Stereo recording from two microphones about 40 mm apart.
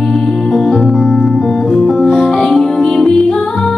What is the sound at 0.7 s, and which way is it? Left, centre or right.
Music, centre.